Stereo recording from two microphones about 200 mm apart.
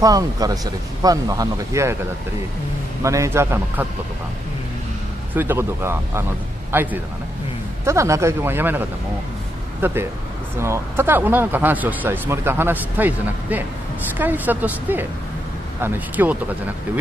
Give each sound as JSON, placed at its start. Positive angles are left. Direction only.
{"t": 0.0, "sound": "speech", "side_deg": -15}
{"t": 3.0, "sound": "speech", "side_deg": -15}
{"t": 5.3, "sound": "a man's voice", "side_deg": -10}